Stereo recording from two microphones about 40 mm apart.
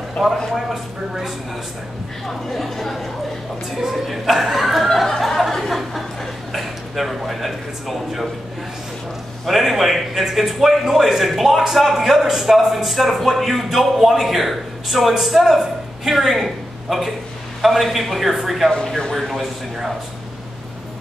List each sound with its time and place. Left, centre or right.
0.2 s chuckle: centre
0.5 s a man's voice: centre
2.2 s a man's voice: centre
4.8 s chuckle: centre
6.5 s speech: centre
9.5 s a man's voice: centre